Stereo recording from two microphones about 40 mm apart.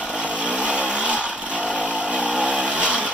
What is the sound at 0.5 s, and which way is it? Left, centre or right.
Vehicle, right.